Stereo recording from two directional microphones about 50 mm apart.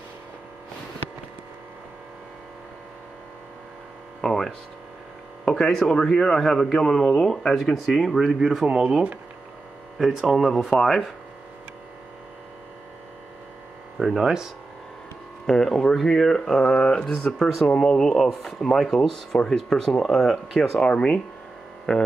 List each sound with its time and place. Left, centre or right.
4.2 s a sound: centre
5.5 s speech: centre
8.2 s speech: centre
13.9 s speech: centre
14.2 s speech: centre
15.4 s speech: centre
17.3 s speech: centre
17.6 s speech: centre
20.8 s speech: centre